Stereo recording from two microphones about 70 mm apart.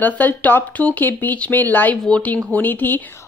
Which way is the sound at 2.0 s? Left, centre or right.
Centre.